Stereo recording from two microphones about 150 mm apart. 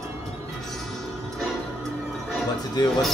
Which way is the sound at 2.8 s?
25° left (ahead or behind).